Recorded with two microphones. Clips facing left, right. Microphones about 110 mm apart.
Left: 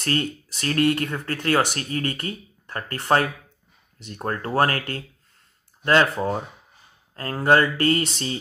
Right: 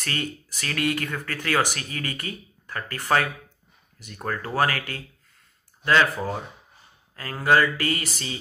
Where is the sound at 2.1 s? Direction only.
45° left (ahead or behind).